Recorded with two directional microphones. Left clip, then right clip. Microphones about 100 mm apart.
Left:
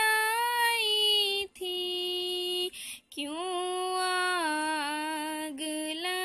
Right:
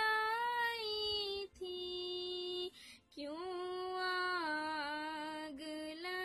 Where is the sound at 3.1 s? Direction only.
40° left (ahead or behind).